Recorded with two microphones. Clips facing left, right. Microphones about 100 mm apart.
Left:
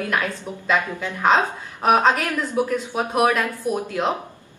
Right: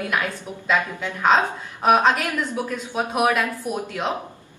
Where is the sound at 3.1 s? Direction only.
5° right (ahead or behind).